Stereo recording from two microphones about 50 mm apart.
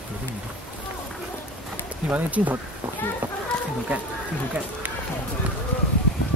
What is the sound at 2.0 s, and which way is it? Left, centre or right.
Speech, right.